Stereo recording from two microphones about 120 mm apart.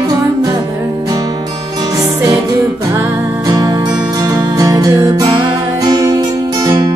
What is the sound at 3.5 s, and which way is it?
Music, 30° right (ahead or behind).